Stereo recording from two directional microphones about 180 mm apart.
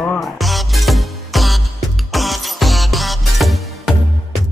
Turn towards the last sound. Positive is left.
turn(degrees=0)  # may be behind; listen again after turning